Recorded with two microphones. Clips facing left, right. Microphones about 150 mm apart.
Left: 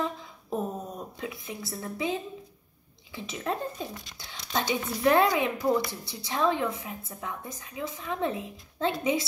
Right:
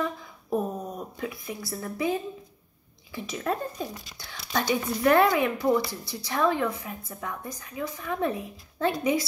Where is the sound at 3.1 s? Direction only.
25° left (ahead or behind).